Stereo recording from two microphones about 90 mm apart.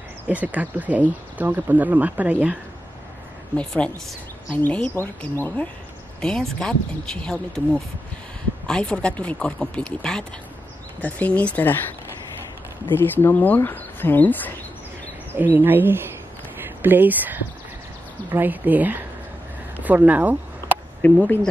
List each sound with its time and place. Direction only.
0.3 s speech: 15° right (ahead or behind)
3.5 s speech: 10° left (ahead or behind)
4.6 s speech: 20° left (ahead or behind)
6.2 s speech: 10° left (ahead or behind)
12.9 s speech: 25° left (ahead or behind)
15.3 s speech: 20° right (ahead or behind)
19.8 s a sound: 15° right (ahead or behind)
21.0 s speech: 20° left (ahead or behind)